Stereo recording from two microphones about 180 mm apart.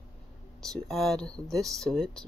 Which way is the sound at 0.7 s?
Centre (ahead or behind).